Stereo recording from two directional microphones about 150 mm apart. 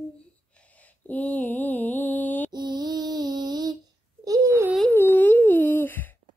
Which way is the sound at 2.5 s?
30° right (ahead or behind).